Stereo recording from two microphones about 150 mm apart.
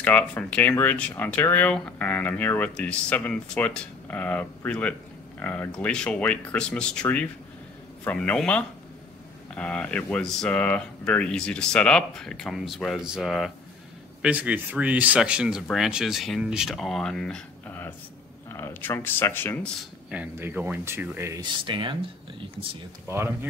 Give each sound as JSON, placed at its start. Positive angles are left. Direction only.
{"t": 0.0, "sound": "speech", "side_deg": 10}
{"t": 20.1, "sound": "speech", "side_deg": -10}
{"t": 21.3, "sound": "speech", "side_deg": -30}
{"t": 23.0, "sound": "speech", "side_deg": -15}